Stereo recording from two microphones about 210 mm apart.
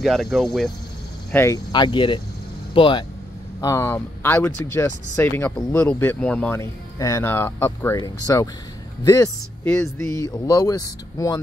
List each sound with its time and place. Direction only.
0.0 s speech: centre (ahead or behind)
1.3 s speech: 15° left (ahead or behind)
3.6 s speech: 15° left (ahead or behind)